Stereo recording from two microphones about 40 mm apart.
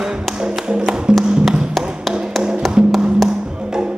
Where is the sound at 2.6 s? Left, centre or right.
Centre.